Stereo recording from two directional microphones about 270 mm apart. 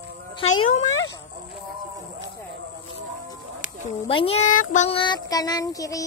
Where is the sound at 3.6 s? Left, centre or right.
Left.